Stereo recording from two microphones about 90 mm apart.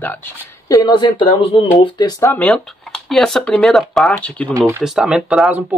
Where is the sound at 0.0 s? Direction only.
20° left (ahead or behind).